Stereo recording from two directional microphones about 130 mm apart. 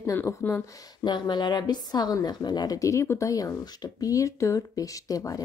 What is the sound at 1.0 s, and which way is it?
A woman's voice, 35° left (ahead or behind).